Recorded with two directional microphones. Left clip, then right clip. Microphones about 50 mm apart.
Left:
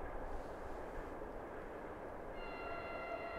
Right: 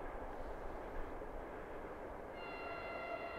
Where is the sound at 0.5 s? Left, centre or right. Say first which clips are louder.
Even; right.